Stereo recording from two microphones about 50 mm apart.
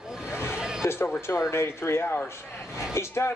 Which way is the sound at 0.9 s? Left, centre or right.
Left.